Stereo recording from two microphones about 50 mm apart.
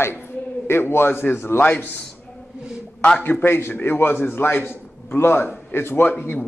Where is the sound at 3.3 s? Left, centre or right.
Left.